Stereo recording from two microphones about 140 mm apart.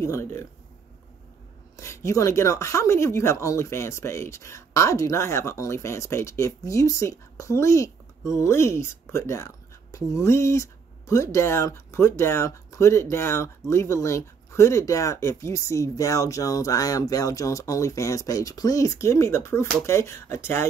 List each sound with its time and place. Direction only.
0.0 s speech: 20° left (ahead or behind)
1.8 s speech: 20° left (ahead or behind)